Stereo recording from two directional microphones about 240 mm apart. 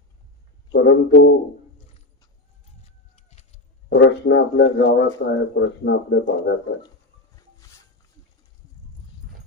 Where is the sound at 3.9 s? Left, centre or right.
Left.